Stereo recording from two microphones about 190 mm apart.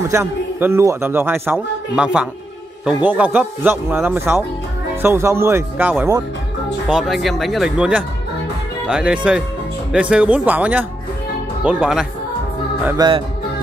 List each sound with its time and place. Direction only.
0.1 s a man's voice: 15° right (ahead or behind)
6.9 s a man's voice: centre (ahead or behind)
12.8 s speech: 20° right (ahead or behind)